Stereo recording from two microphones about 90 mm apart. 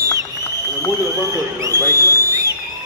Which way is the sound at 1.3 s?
35° right (ahead or behind).